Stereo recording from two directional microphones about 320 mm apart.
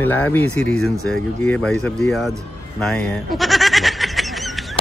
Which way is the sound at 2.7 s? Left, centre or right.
Centre.